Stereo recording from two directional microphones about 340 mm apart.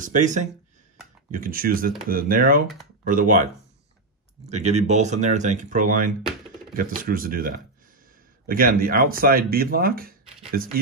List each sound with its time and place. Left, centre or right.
0.0 s speech: right
4.5 s speech: centre